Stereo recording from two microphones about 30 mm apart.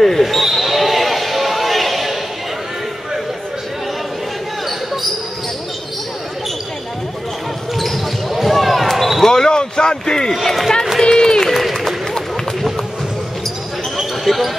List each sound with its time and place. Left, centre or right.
0.2 s basketball bounce: centre
7.7 s basketball bounce: centre
9.2 s basketball bounce: left
10.4 s speech: centre
11.0 s run: centre
14.2 s basketball bounce: centre